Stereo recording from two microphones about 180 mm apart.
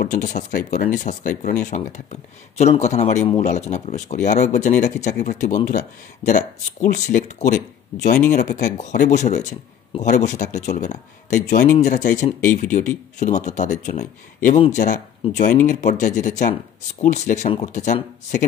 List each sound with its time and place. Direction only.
0.0 s speech: 45° left (ahead or behind)